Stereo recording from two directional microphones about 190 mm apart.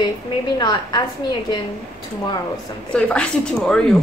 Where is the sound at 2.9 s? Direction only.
5° left (ahead or behind).